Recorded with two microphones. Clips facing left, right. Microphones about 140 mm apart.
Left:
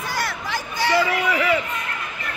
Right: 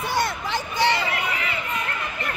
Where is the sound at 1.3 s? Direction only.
90° left.